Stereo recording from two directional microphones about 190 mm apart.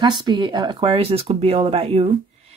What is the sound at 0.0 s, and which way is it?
Speech, 25° right (ahead or behind).